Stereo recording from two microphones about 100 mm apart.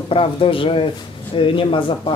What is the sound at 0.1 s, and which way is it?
Speech, 65° left (ahead or behind).